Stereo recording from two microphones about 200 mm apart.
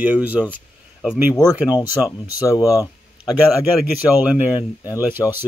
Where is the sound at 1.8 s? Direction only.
15° left (ahead or behind).